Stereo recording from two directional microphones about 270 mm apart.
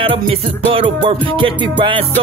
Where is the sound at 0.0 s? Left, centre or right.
Centre.